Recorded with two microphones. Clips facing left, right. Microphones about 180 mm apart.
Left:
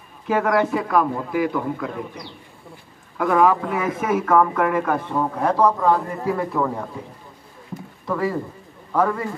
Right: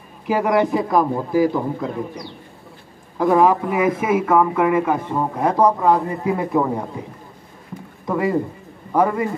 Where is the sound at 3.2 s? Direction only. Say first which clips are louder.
Right 2 dB; 25° right (ahead or behind).